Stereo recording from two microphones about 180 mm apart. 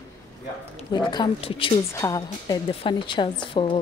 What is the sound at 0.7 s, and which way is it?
A woman's voice, 25° left (ahead or behind).